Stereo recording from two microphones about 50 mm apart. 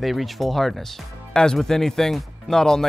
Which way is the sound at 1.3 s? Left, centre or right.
Centre.